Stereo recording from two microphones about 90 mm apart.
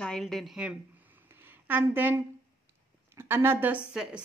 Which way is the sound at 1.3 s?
25° right (ahead or behind).